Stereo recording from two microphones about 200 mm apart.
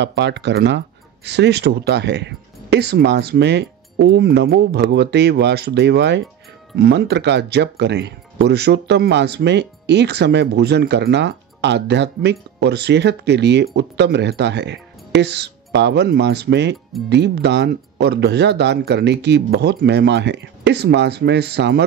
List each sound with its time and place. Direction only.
0.0 s speech: 60° right (ahead or behind)